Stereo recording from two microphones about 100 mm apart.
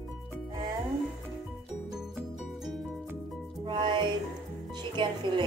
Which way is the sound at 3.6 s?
50° right (ahead or behind).